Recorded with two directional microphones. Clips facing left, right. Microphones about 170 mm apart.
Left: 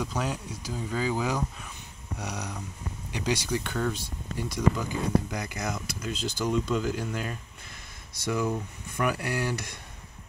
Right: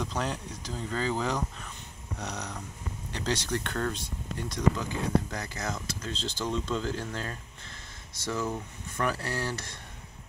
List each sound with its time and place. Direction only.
0.0 s speech: 5° left (ahead or behind)